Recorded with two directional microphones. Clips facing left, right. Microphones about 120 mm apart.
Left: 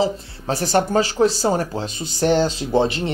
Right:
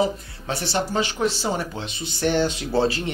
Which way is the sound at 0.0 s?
40° left (ahead or behind).